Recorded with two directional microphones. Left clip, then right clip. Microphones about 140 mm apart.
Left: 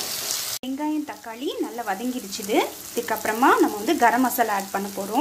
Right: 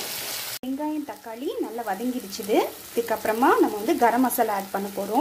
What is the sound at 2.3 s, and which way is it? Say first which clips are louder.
Frying: even; 20° right (ahead or behind).